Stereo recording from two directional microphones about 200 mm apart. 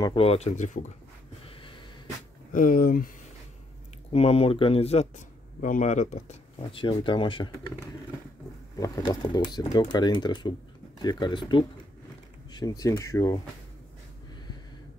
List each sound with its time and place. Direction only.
0.0 s speech: 25° left (ahead or behind)
2.5 s speech: 45° left (ahead or behind)
4.1 s speech: 30° left (ahead or behind)
8.7 s speech: 20° left (ahead or behind)